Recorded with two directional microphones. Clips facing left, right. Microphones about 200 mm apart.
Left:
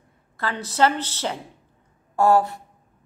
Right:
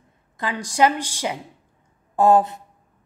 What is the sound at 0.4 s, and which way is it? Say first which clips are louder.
A woman's voice: right 2 dB; 15° right (ahead or behind).